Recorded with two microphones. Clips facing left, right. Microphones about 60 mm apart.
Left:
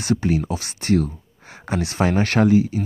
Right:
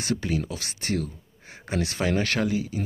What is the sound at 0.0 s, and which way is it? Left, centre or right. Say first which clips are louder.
Speech: left 6 dB; left.